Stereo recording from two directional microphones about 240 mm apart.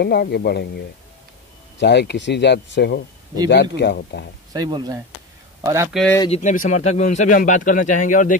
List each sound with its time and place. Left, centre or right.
0.0 s speech: left
1.8 s speech: left
4.6 s speech: centre
6.1 s speech: left